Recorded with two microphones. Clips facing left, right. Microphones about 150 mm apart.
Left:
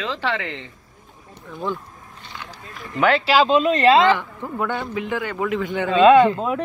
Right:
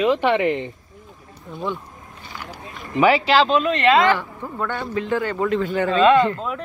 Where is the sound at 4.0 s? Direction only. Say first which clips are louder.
Left 1 dB; 20° left (ahead or behind).